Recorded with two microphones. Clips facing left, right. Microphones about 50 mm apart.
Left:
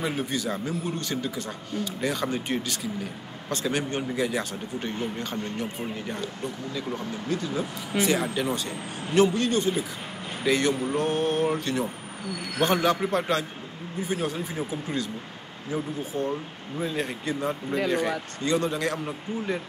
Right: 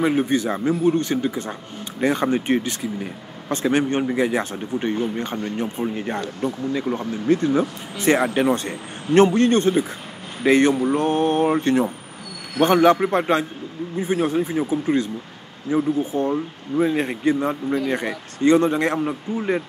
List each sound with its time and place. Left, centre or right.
0.0 s speech: right
10.4 s speech: right